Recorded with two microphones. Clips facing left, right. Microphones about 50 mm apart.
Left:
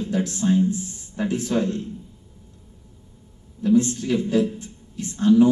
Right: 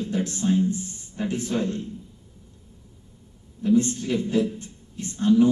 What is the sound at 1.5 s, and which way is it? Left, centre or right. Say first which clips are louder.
Speech: left 4 dB; left.